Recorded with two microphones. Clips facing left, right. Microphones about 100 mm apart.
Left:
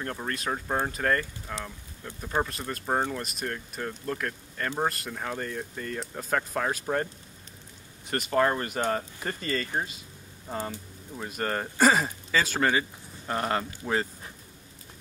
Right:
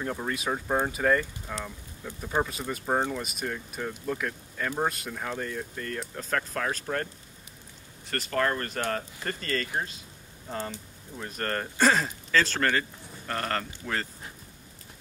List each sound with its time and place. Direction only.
0.0 s speech: 5° right (ahead or behind); by 7.1 s 10° left (ahead or behind)
8.1 s speech: 15° left (ahead or behind)